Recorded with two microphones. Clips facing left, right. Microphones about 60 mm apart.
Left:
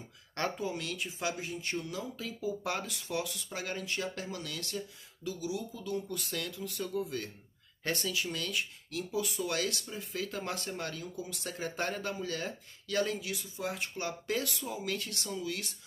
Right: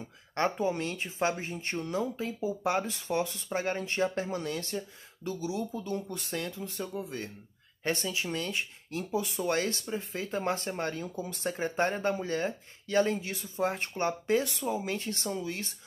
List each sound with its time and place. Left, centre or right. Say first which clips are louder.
0.3 s speech: right 6 dB; right